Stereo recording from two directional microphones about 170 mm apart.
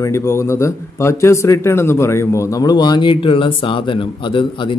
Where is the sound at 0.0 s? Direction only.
15° left (ahead or behind).